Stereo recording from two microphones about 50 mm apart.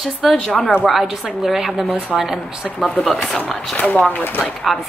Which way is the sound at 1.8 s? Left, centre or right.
Right.